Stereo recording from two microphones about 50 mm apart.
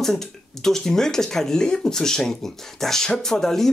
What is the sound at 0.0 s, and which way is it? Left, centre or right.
Speech, centre.